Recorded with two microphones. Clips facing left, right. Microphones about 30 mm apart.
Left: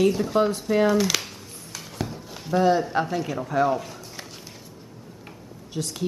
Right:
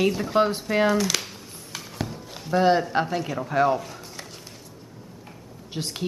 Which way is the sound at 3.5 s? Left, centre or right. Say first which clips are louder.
Right 1 dB; centre.